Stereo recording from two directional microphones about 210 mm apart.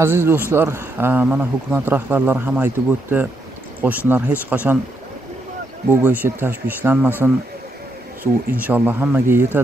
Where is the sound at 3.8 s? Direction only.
10° right (ahead or behind).